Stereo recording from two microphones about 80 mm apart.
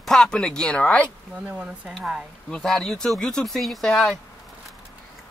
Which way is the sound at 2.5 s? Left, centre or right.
Centre.